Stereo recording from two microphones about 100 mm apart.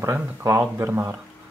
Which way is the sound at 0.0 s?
30° right (ahead or behind).